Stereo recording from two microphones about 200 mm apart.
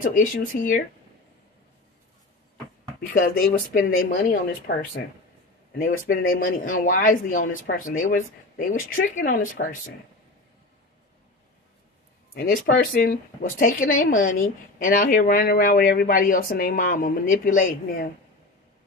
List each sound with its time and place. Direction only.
0.0 s speech: 40° left (ahead or behind)
3.1 s a woman's voice: 45° left (ahead or behind)
12.4 s a woman's voice: 50° left (ahead or behind)